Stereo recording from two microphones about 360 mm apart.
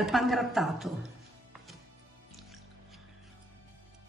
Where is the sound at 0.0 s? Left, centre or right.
Centre.